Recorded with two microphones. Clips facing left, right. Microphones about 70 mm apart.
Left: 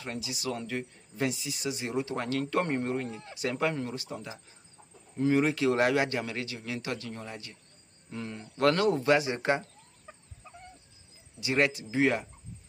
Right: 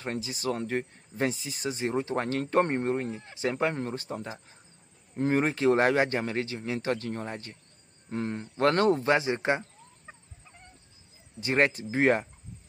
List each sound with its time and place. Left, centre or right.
0.0 s speech: right
11.3 s speech: right